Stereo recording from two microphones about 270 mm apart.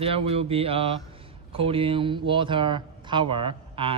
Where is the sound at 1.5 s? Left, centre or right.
Centre.